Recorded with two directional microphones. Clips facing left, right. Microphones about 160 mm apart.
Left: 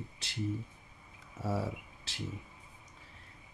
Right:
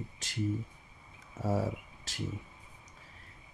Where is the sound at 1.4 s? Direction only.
45° right (ahead or behind).